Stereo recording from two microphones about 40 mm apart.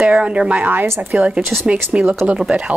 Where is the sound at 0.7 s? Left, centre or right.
Right.